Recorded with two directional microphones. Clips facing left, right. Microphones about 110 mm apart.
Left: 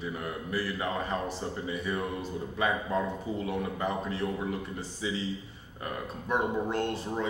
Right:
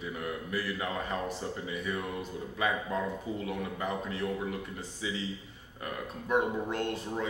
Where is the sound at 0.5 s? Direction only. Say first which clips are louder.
Left 3 dB; 35° left (ahead or behind).